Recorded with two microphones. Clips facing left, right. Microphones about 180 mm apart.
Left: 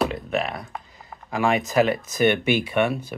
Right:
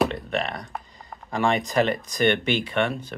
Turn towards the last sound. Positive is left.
turn(degrees=10)  # may be behind; listen again after turning